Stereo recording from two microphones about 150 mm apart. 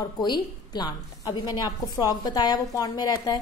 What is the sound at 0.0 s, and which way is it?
A woman's voice, 30° left (ahead or behind).